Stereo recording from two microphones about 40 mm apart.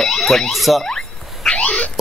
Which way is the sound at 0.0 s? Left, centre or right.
Centre.